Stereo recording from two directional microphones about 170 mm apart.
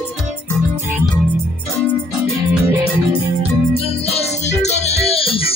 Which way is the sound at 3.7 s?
35° left (ahead or behind).